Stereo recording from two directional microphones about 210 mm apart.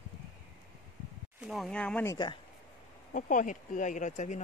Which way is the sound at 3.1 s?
40° left (ahead or behind).